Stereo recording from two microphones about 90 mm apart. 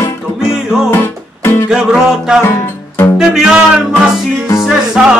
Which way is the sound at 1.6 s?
5° right (ahead or behind).